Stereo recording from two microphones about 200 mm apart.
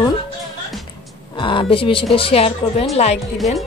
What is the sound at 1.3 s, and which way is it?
A woman's voice, 25° left (ahead or behind).